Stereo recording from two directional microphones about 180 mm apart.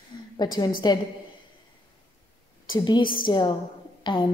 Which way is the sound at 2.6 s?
25° left (ahead or behind).